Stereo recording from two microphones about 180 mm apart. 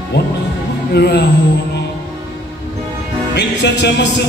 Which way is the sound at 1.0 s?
65° left (ahead or behind).